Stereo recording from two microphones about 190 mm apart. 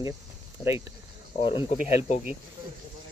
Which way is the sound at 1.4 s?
30° left (ahead or behind).